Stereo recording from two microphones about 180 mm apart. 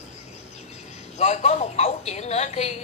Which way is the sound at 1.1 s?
40° left (ahead or behind).